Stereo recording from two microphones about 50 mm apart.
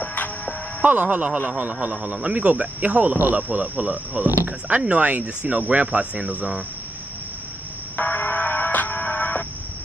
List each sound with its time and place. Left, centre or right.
0.0 s music: left
0.8 s speech: right
7.9 s music: left